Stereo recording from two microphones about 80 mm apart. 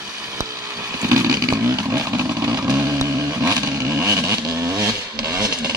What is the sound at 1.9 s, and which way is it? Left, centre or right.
Chainsaw, right.